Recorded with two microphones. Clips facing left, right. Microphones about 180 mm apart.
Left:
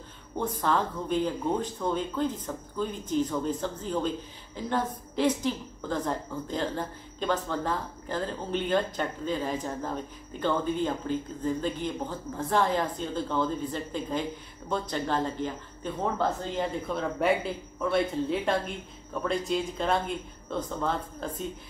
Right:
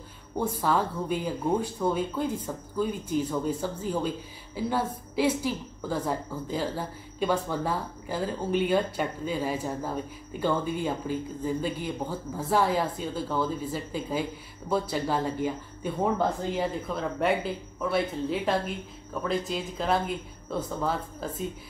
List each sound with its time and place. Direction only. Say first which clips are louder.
0.4 s a woman's voice: right 1 dB; 10° right (ahead or behind)